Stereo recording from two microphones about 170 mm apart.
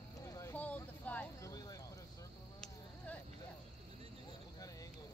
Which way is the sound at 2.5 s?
10° left (ahead or behind).